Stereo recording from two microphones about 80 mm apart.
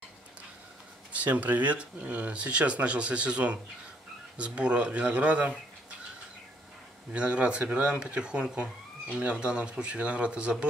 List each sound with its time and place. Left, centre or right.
1.1 s speech: centre
7.1 s speech: centre